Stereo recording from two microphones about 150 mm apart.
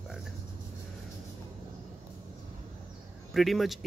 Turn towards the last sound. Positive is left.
turn(degrees=0)  # may be behind; listen again after turning